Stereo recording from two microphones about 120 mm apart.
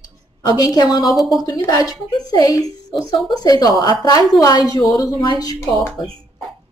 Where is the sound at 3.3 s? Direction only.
35° left (ahead or behind).